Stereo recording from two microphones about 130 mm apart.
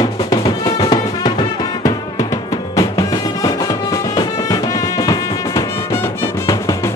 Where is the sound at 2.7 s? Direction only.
25° left (ahead or behind).